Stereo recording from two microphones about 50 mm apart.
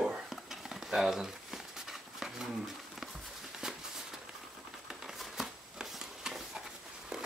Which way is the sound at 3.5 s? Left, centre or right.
Centre.